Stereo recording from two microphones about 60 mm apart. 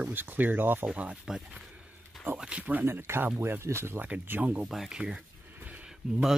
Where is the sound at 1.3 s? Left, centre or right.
Centre.